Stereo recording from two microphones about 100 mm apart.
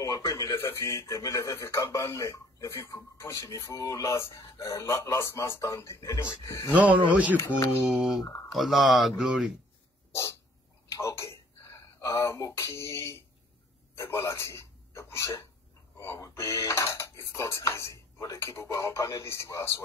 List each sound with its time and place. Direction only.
0.0 s a man's voice: 35° left (ahead or behind)
6.7 s speech: 15° right (ahead or behind)
7.3 s a man's voice: 30° left (ahead or behind)
7.8 s speech: 5° right (ahead or behind)
10.9 s speech: 30° left (ahead or behind)